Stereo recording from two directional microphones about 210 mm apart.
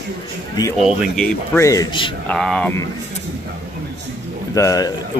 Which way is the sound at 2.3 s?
5° left (ahead or behind).